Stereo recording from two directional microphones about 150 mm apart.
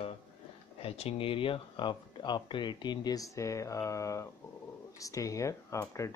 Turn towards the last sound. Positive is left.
turn(degrees=20)  # may be behind; listen again after turning